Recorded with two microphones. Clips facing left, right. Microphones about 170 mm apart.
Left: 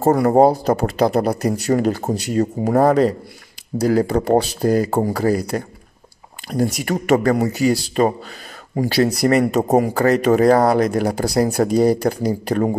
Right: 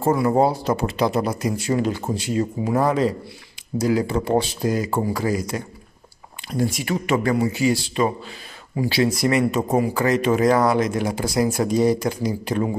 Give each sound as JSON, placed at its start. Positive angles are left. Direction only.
{"t": 0.0, "sound": "speech", "side_deg": 40}